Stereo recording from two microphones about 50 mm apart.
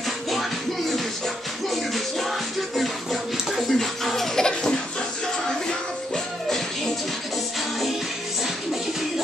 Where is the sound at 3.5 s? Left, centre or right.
Centre.